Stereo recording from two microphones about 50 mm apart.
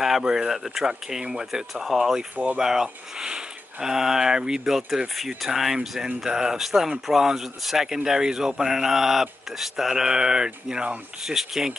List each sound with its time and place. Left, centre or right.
0.0 s speech: centre
2.3 s speech: right
2.6 s speech: centre
4.6 s speech: centre